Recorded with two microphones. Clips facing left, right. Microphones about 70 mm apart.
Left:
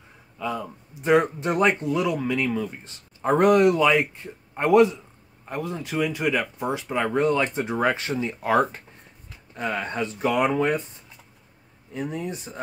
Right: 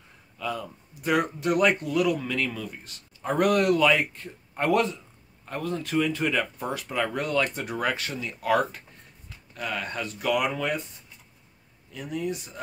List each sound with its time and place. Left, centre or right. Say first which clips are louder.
0.4 s speech: left 3 dB; left
11.9 s speech: left 1 dB; left